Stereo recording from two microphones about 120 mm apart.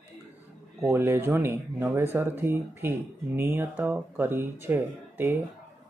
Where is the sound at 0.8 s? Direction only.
20° right (ahead or behind).